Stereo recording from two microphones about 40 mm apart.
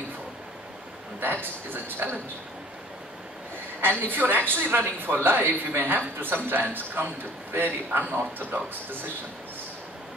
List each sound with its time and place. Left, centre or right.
1.2 s a woman's voice: right
3.8 s a woman's voice: right
8.1 s speech: right